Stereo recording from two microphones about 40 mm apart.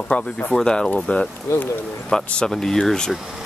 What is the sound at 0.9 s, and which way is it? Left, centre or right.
Speech, centre.